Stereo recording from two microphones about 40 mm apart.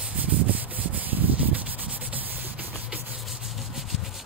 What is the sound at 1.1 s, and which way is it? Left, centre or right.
Rub, right.